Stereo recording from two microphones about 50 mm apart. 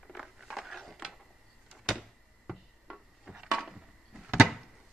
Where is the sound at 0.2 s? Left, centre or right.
Centre.